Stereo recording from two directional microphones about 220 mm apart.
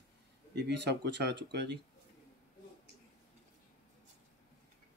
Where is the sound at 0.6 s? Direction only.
50° right (ahead or behind).